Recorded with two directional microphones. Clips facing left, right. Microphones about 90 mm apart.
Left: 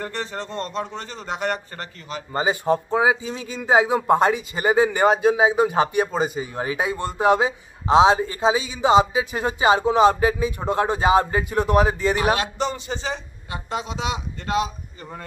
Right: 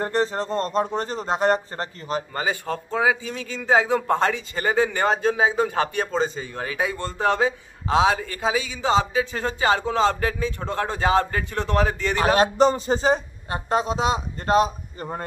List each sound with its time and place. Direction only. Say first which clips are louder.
0.0 s speech: right 6 dB; 35° right (ahead or behind)
2.3 s a man's voice: left 5 dB; 20° left (ahead or behind)
12.4 s speech: right 8 dB; 40° right (ahead or behind)